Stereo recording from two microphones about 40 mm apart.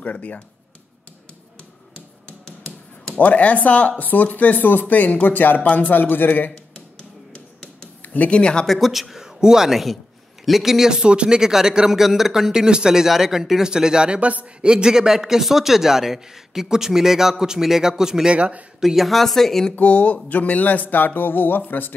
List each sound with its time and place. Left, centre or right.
0.0 s speech: left
2.4 s finger snapping: left
3.2 s speech: left
6.5 s a sound: left
8.0 s a sound: left
8.3 s speech: left
8.6 s speech: centre
9.2 s a man's voice: centre
10.9 s a man's voice: right
14.7 s a man's voice: centre
18.3 s speech: right
18.8 s speech: centre
19.7 s speech: left
20.9 s speech: left